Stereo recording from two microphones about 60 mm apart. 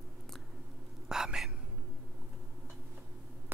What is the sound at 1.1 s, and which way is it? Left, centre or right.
Whispering, centre.